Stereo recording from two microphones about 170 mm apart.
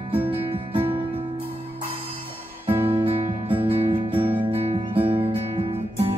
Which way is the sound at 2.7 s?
35° right (ahead or behind).